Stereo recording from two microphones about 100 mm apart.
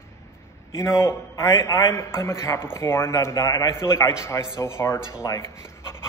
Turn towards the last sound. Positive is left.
turn(degrees=30)  # may be behind; listen again after turning